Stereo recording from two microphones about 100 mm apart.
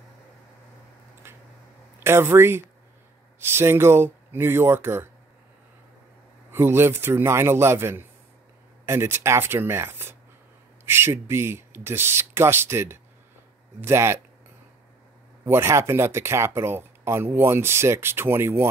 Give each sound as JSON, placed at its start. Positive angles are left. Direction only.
{"t": 1.2, "sound": "a sound", "side_deg": -25}
{"t": 2.0, "sound": "speech", "side_deg": -25}
{"t": 6.5, "sound": "speech", "side_deg": -25}
{"t": 15.4, "sound": "speech", "side_deg": -25}